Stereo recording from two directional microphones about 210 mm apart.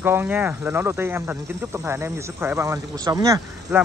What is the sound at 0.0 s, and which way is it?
Speech, 10° right (ahead or behind).